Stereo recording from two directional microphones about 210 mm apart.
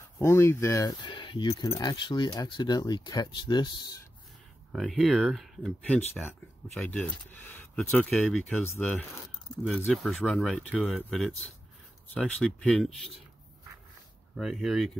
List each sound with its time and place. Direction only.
0.2 s speech: 15° left (ahead or behind)
4.7 s speech: centre (ahead or behind)
14.3 s speech: centre (ahead or behind)